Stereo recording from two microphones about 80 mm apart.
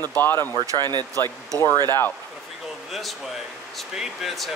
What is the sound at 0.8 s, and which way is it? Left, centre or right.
Speech, right.